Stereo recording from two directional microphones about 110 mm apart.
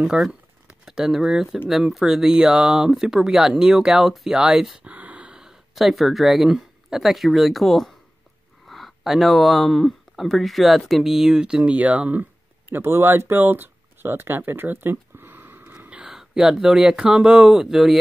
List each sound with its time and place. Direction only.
0.0 s speech: 5° right (ahead or behind)